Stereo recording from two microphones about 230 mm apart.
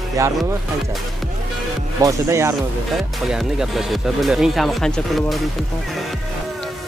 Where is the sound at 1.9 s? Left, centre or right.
Centre.